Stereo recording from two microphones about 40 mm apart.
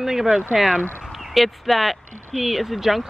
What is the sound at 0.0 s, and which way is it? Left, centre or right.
Speech, centre.